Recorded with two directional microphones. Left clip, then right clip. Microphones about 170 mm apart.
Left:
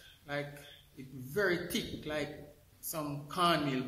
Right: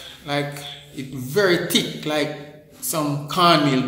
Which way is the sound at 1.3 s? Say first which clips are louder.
Right 14 dB; 5° right (ahead or behind).